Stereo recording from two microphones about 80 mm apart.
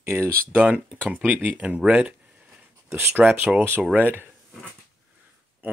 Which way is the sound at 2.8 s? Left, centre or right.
Right.